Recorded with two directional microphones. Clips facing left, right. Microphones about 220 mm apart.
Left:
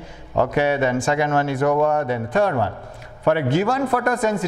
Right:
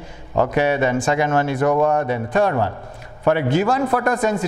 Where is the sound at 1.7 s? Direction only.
25° right (ahead or behind).